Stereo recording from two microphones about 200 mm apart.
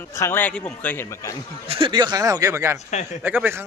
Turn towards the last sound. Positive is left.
turn(degrees=-10)  # may be behind; listen again after turning